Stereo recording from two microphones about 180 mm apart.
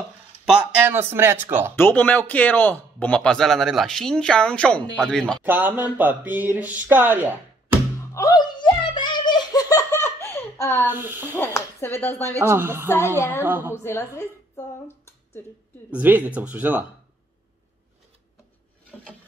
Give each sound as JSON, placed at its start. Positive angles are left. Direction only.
{"t": 0.6, "sound": "speech", "side_deg": -10}
{"t": 1.8, "sound": "speech", "side_deg": 10}
{"t": 5.4, "sound": "speech", "side_deg": -10}
{"t": 8.1, "sound": "giggle", "side_deg": 20}
{"t": 10.9, "sound": "speech", "side_deg": -10}
{"t": 11.2, "sound": "speech", "side_deg": 15}
{"t": 12.4, "sound": "speech", "side_deg": -15}
{"t": 12.8, "sound": "speech", "side_deg": 15}
{"t": 13.4, "sound": "speech", "side_deg": -10}
{"t": 13.8, "sound": "a woman's voice", "side_deg": 15}
{"t": 15.9, "sound": "speech", "side_deg": -10}